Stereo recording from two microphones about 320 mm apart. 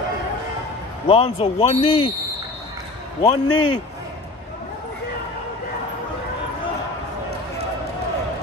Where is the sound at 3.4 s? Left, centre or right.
Left.